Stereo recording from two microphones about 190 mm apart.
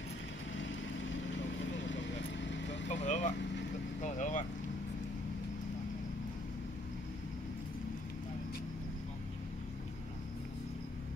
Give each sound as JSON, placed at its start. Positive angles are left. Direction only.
{"t": 2.9, "sound": "vehicle", "side_deg": 40}